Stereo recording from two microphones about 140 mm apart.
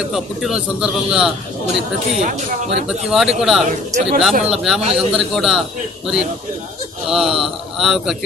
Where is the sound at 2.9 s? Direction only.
5° right (ahead or behind).